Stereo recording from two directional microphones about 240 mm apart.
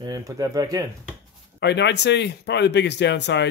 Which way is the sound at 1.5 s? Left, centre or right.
Left.